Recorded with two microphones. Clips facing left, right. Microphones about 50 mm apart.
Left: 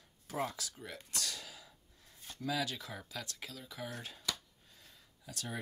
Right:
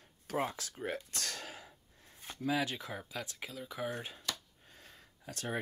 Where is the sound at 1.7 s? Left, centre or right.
Right.